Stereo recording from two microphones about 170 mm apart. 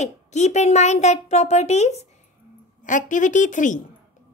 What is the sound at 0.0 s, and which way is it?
A woman's voice, 45° left (ahead or behind).